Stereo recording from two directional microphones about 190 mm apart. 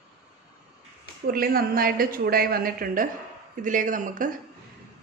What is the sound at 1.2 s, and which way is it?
A woman's voice, 50° right (ahead or behind).